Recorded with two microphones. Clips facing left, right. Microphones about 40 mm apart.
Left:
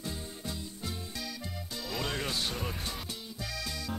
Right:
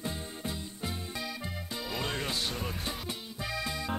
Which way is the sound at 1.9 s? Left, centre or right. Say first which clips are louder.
Even; centre.